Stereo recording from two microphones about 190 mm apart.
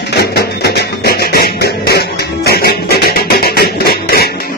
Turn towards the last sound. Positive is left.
turn(degrees=55)  # may be behind; listen again after turning